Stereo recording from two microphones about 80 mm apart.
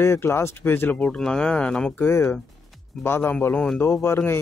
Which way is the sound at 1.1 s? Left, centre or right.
Centre.